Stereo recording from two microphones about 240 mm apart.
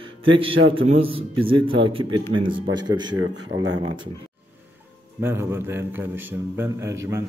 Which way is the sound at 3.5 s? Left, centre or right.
Right.